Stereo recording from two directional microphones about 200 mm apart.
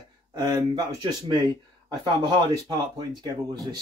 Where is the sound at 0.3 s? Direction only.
20° right (ahead or behind).